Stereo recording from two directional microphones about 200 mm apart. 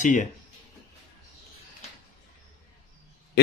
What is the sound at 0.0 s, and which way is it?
Speech, 40° left (ahead or behind).